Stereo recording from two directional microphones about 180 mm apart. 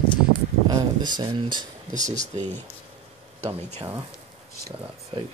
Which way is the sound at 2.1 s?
40° right (ahead or behind).